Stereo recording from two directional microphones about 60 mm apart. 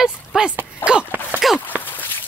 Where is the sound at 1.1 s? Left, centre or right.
Right.